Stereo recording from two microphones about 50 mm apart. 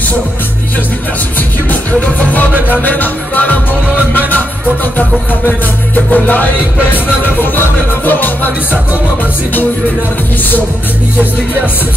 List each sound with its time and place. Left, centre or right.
1.7 s music: left
5.9 s music: left